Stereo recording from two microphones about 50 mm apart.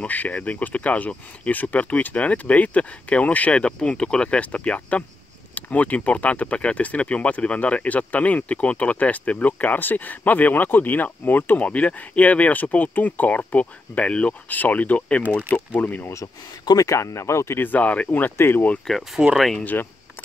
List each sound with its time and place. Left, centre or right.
0.0 s speech: left
11.6 s speech: left
15.7 s speech: left
16.8 s speech: left
17.6 s speech: left
18.1 s speech: left
18.9 s speech: centre
19.6 s speech: left